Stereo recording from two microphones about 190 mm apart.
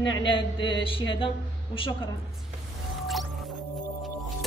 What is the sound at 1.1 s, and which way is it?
Speech, 25° left (ahead or behind).